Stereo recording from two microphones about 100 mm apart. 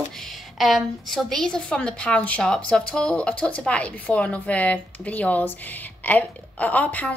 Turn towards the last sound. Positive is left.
turn(degrees=15)  # may be behind; listen again after turning